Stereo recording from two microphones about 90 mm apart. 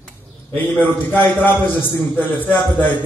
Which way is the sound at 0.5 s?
20° left (ahead or behind).